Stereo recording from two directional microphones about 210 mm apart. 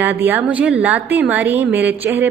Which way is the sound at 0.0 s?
10° right (ahead or behind).